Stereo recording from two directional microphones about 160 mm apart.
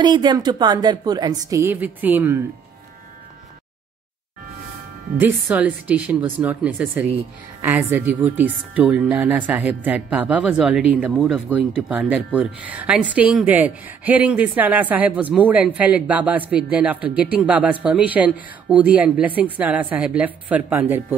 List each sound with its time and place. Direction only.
0.0 s a woman's voice: 25° right (ahead or behind)
5.3 s speech: 5° right (ahead or behind)